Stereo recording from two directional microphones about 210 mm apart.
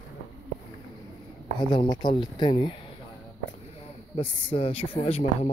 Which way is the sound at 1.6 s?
20° left (ahead or behind).